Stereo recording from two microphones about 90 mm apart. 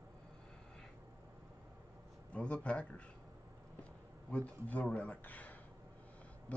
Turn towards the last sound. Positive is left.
turn(degrees=20)  # may be behind; listen again after turning